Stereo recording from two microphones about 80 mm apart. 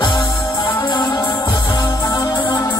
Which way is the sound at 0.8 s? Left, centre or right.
Left.